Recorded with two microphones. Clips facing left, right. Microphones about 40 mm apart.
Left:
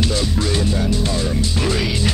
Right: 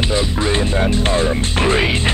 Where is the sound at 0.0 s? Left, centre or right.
Right.